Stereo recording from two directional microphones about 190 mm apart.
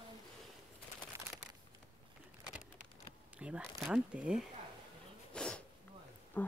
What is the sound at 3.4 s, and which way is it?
Speech, 5° right (ahead or behind).